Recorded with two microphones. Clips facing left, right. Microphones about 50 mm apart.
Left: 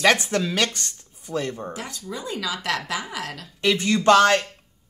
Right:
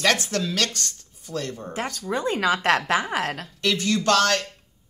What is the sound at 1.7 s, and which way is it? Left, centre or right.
Speech, right.